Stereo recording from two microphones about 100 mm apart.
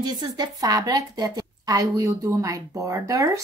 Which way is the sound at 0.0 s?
45° right (ahead or behind).